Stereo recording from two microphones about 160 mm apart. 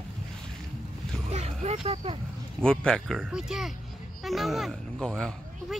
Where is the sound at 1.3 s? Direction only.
40° right (ahead or behind).